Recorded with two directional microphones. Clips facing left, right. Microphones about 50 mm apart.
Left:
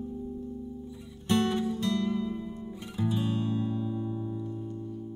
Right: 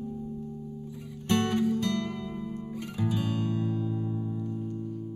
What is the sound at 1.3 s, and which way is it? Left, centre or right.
Music, right.